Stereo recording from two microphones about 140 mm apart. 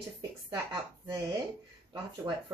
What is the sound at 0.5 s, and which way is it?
Speech, 30° right (ahead or behind).